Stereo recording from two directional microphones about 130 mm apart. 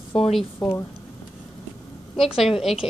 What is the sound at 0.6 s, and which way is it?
Speech, 20° left (ahead or behind).